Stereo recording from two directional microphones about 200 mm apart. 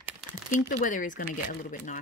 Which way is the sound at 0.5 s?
45° left (ahead or behind).